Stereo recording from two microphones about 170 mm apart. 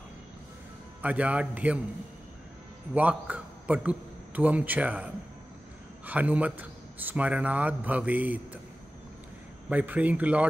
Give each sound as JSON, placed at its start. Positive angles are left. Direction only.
{"t": 1.0, "sound": "speech", "side_deg": -10}
{"t": 2.9, "sound": "a man's voice", "side_deg": -10}
{"t": 9.7, "sound": "speech", "side_deg": -10}